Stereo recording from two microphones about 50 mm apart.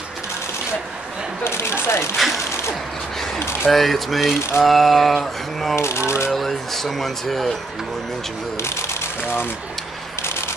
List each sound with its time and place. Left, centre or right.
1.4 s speech: left
2.1 s speech: centre
3.7 s speech: centre
5.8 s speech: left
6.3 s speech: centre